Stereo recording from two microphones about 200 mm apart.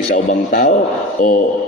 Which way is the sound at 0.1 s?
40° left (ahead or behind).